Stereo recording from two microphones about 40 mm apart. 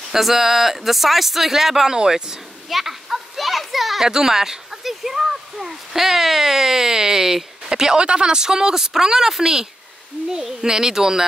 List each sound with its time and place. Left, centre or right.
0.1 s speech: centre
2.7 s children playing: centre
4.1 s speech: centre